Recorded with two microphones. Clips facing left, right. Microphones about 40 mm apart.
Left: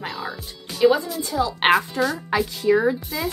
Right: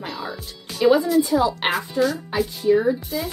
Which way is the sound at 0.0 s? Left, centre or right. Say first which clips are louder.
Even; centre.